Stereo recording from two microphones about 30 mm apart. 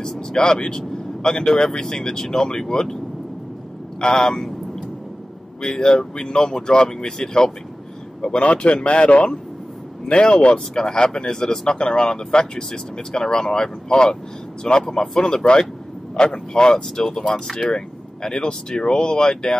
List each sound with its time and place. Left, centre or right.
0.0 s speech: left
4.0 s speech: left
5.6 s speech: left
8.2 s speech: left
10.7 s speech: left
11.6 s speech: left
16.7 s speech: centre